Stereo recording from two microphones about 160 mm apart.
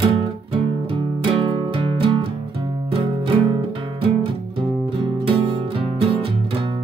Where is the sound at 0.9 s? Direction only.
35° right (ahead or behind).